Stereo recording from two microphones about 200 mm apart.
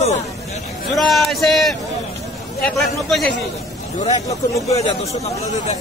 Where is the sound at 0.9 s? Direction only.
Centre (ahead or behind).